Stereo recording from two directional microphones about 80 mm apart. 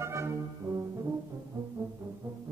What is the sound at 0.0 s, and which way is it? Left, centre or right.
Brass instrument, right.